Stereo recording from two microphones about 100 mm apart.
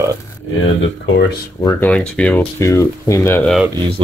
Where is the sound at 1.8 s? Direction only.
15° left (ahead or behind).